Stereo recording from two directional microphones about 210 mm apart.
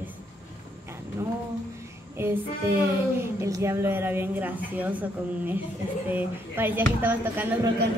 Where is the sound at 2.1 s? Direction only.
10° right (ahead or behind).